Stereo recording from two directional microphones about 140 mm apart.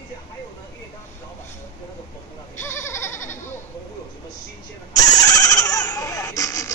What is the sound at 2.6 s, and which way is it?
Goat, 20° left (ahead or behind).